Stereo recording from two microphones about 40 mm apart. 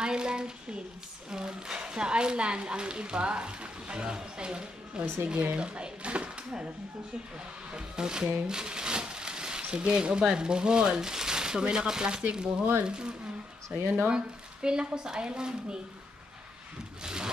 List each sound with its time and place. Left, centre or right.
0.0 s a sound: centre
1.3 s a woman's voice: centre
5.0 s speech: right
5.6 s a woman's voice: right
7.7 s a woman's voice: right
11.0 s a sound: centre
11.6 s a woman's voice: centre
17.0 s a woman's voice: centre